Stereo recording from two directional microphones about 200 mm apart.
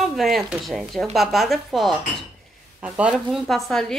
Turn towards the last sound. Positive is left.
turn(degrees=0)  # may be behind; listen again after turning